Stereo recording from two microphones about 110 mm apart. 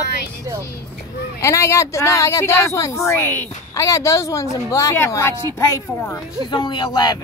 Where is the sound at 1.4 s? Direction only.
25° left (ahead or behind).